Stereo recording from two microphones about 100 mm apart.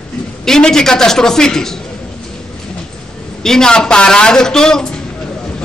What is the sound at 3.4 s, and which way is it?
A woman's voice, 5° left (ahead or behind).